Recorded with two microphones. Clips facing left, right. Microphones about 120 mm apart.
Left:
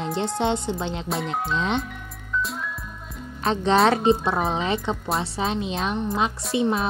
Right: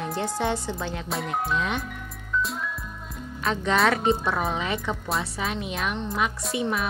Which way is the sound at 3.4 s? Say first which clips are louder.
Left 4 dB; 30° left (ahead or behind).